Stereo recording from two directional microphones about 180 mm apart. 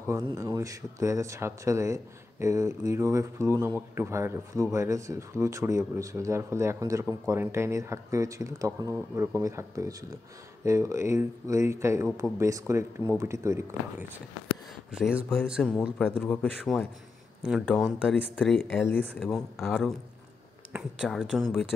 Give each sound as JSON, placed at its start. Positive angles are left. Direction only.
{"t": 0.1, "sound": "speech", "side_deg": -15}
{"t": 19.1, "sound": "speech", "side_deg": 0}